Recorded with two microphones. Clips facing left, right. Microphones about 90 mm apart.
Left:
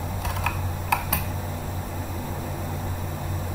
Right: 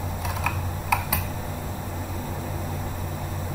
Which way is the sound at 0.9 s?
60° left (ahead or behind).